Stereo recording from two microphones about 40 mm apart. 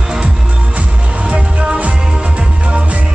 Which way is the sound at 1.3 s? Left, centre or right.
Right.